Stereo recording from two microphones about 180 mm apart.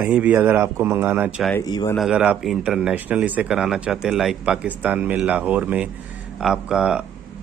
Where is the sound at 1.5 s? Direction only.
20° left (ahead or behind).